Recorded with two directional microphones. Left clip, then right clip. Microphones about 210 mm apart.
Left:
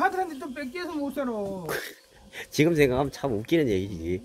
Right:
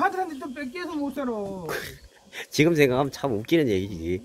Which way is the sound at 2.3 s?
10° right (ahead or behind).